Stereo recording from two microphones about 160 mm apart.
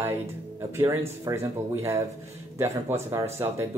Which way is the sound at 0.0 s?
15° right (ahead or behind).